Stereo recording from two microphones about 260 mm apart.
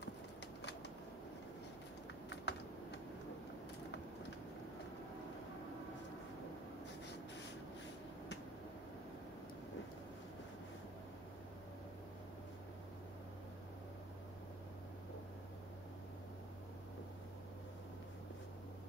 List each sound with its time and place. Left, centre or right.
2.2 s typing: left